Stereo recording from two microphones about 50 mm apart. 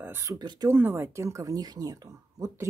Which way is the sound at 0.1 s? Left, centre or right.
Right.